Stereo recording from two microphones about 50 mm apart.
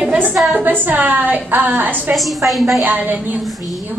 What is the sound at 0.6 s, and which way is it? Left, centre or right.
A woman's voice, right.